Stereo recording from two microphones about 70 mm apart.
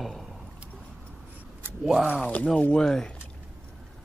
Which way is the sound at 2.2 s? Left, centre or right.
Centre.